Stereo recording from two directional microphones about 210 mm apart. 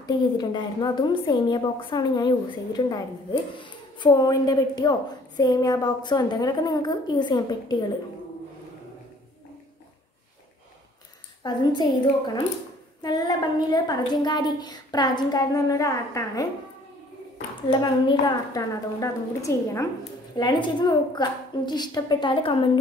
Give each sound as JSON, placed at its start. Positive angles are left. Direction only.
{"t": 0.0, "sound": "a woman's voice", "side_deg": 20}
{"t": 11.4, "sound": "a woman's voice", "side_deg": 20}
{"t": 13.0, "sound": "a woman's voice", "side_deg": 20}
{"t": 17.6, "sound": "a woman's voice", "side_deg": 20}